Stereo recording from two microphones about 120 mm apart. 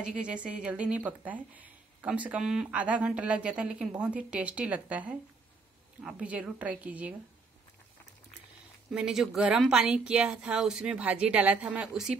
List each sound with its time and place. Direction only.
0.0 s speech: 10° right (ahead or behind)
8.9 s speech: 5° right (ahead or behind)